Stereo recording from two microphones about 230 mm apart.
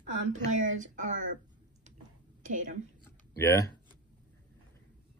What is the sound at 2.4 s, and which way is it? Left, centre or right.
Speech, right.